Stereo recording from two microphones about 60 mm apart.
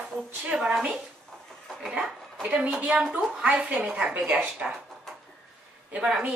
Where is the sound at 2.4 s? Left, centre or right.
Right.